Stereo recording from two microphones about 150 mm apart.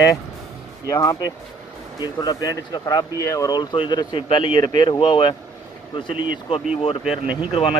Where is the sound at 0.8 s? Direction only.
25° left (ahead or behind).